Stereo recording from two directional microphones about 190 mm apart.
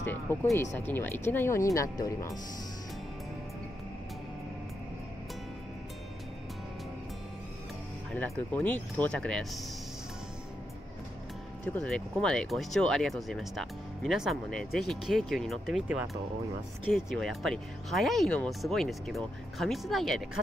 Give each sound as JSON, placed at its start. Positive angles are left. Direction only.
{"t": 0.0, "sound": "speech", "side_deg": 10}
{"t": 8.1, "sound": "speech", "side_deg": 5}
{"t": 11.6, "sound": "speech", "side_deg": 5}